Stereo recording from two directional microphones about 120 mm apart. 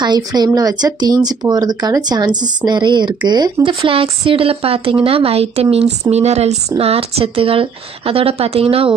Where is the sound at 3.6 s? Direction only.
50° right (ahead or behind).